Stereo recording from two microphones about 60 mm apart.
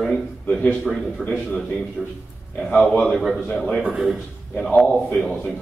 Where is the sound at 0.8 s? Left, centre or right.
Centre.